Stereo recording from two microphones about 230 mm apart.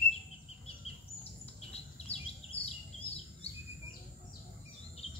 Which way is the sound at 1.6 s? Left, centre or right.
Left.